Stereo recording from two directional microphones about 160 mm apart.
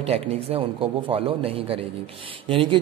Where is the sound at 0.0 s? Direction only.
40° right (ahead or behind).